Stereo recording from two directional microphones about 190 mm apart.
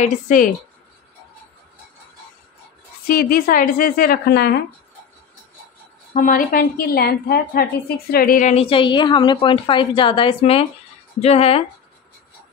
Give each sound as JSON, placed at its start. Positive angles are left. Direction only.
{"t": 0.0, "sound": "a woman's voice", "side_deg": 40}
{"t": 3.1, "sound": "a woman's voice", "side_deg": 50}
{"t": 6.1, "sound": "a woman's voice", "side_deg": 45}